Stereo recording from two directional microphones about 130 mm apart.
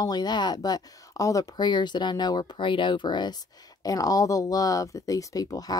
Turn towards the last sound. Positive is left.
turn(degrees=30)  # may be behind; listen again after turning